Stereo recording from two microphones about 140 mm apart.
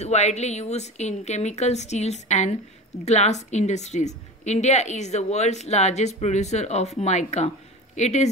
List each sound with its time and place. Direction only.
0.0 s a woman's voice: 50° left (ahead or behind)